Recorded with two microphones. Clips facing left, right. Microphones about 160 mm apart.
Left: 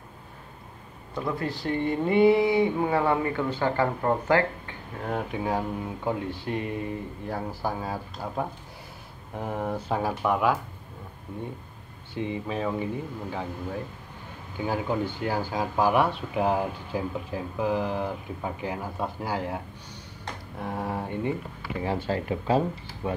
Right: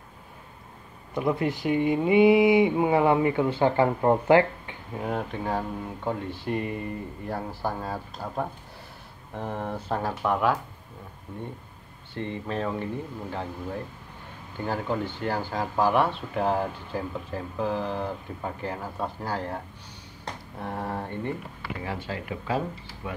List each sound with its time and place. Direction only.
1.1 s speech: 20° right (ahead or behind)
5.0 s speech: 5° left (ahead or behind)
12.1 s speech: 5° left (ahead or behind)
21.8 s speech: 35° left (ahead or behind)